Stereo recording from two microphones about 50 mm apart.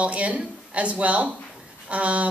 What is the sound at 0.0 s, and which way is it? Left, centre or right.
A woman's voice, right.